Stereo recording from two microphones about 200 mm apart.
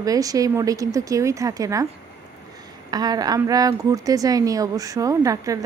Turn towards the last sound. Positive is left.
turn(degrees=-15)  # may be behind; listen again after turning